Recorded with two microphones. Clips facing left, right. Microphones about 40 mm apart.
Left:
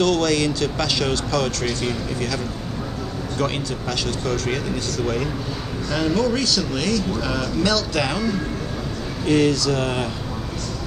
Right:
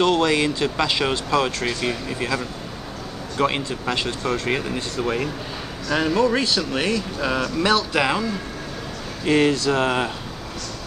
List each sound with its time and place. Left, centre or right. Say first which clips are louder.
0.0 s speech: right 1 dB; right
9.2 s speech: even; right